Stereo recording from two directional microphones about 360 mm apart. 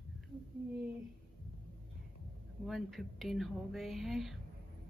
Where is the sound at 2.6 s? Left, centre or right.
Centre.